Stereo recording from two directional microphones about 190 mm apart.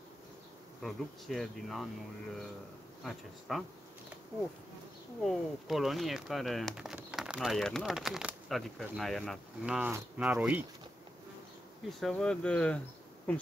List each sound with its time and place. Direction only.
0.8 s speech: centre (ahead or behind)
3.0 s speech: centre (ahead or behind)
5.2 s speech: centre (ahead or behind)
9.8 s speech: 10° right (ahead or behind)
12.0 s speech: 5° left (ahead or behind)